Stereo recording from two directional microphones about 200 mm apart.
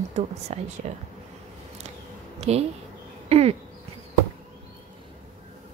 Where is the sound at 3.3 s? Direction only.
30° right (ahead or behind).